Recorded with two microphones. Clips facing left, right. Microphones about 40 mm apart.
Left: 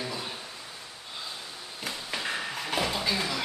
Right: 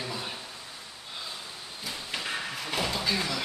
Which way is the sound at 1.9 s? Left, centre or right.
Centre.